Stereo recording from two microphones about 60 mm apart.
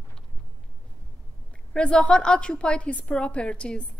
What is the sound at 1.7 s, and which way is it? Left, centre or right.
A woman's voice, centre.